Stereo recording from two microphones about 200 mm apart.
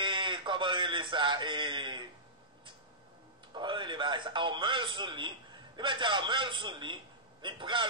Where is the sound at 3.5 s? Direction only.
25° right (ahead or behind).